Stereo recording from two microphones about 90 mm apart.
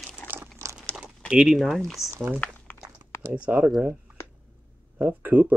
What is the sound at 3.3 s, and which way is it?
Speech, 15° right (ahead or behind).